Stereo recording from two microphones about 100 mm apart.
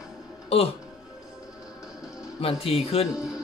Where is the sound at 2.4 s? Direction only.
80° left.